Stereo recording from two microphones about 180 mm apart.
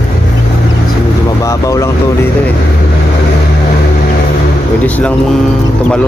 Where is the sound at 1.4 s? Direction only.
20° left (ahead or behind).